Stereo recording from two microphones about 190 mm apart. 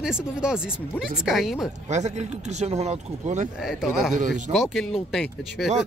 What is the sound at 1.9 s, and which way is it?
Speech, 35° right (ahead or behind).